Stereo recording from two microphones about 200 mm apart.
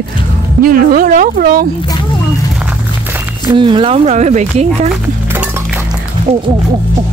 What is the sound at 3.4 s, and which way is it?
Speech, 25° right (ahead or behind).